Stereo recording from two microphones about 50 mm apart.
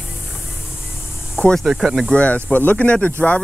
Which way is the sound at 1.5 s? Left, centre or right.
Centre.